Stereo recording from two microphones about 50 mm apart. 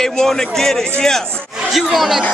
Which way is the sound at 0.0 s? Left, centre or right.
Centre.